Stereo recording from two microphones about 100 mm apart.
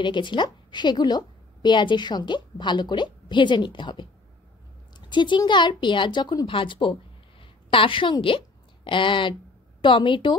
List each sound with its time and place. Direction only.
0.0 s a woman's voice: 50° left (ahead or behind)